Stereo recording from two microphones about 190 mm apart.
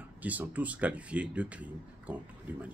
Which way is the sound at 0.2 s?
10° right (ahead or behind).